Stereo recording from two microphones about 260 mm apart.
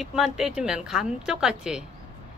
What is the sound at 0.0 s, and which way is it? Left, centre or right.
Speech, centre.